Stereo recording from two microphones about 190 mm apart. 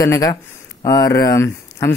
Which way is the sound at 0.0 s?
15° left (ahead or behind).